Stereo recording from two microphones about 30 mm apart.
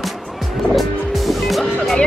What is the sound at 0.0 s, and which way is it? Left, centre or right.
Music, centre.